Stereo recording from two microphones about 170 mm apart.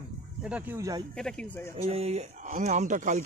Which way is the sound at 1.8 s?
35° right (ahead or behind).